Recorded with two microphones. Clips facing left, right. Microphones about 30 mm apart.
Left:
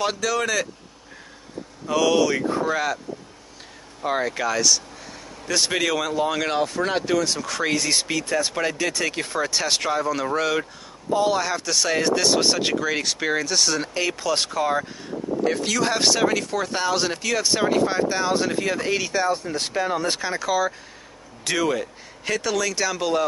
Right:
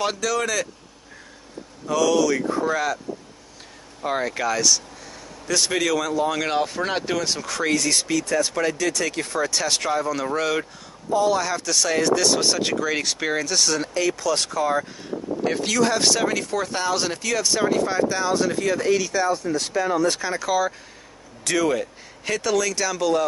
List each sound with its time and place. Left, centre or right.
0.0 s speech: centre
1.9 s speech: left
4.0 s speech: centre
6.4 s speech: centre
11.1 s speech: left
11.3 s speech: centre
15.4 s speech: centre
15.8 s speech: centre
17.4 s speech: centre